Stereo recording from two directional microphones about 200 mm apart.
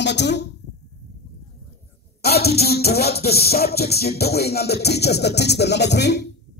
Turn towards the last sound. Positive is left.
turn(degrees=55)  # may be behind; listen again after turning